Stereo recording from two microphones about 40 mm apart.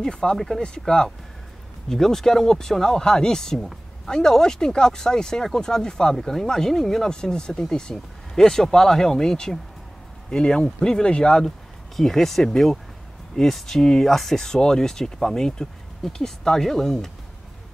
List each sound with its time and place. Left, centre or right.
0.0 s speech: centre
7.1 s speech: centre